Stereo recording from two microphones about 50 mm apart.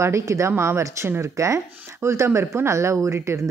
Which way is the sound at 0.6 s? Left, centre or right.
Right.